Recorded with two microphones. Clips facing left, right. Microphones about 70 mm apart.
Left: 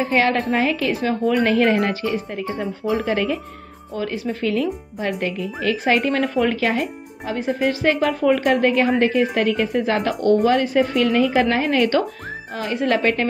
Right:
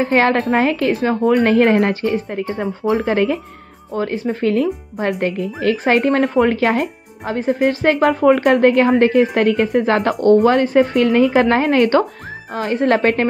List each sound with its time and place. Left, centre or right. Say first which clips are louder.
0.0 s speech: right 4 dB; right